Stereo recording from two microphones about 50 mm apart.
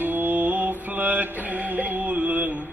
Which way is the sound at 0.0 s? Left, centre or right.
Right.